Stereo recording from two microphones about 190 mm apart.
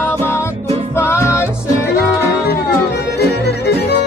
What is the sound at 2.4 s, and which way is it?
Music, 60° left (ahead or behind).